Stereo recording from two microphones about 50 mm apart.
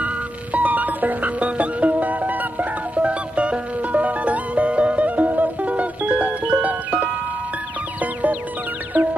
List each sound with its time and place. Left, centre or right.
0.0 s music: right